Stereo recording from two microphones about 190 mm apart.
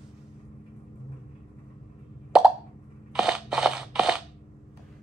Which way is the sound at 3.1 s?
5° right (ahead or behind).